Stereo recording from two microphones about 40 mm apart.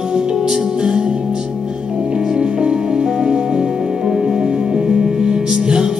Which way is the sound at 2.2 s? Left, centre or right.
Centre.